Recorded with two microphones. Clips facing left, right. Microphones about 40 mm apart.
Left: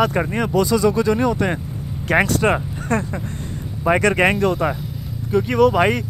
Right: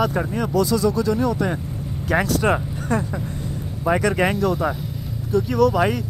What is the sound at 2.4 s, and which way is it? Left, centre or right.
Speech, left.